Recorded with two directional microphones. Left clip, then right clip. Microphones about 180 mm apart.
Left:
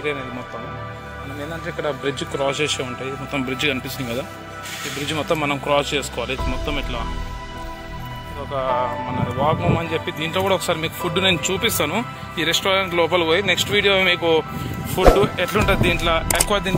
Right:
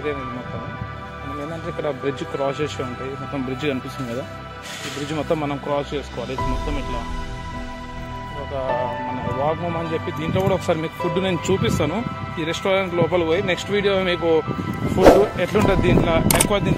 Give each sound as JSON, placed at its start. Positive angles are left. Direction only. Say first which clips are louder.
{"t": 1.9, "sound": "speech", "louder": "left 1 dB", "side_deg": -15}
{"t": 5.1, "sound": "speech", "louder": "left 2 dB", "side_deg": -15}
{"t": 5.7, "sound": "speech", "louder": "left 6 dB", "side_deg": 0}
{"t": 9.5, "sound": "speech", "louder": "left 3 dB", "side_deg": -20}